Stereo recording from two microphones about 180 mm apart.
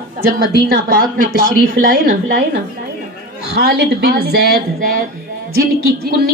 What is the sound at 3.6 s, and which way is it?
A woman's voice, 55° right (ahead or behind).